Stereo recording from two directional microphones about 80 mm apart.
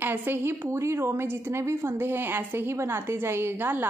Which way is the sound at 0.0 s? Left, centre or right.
Right.